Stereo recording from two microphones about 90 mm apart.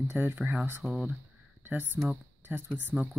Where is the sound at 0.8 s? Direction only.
10° right (ahead or behind).